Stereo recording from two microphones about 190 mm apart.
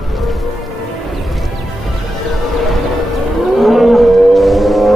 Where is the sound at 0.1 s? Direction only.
Centre (ahead or behind).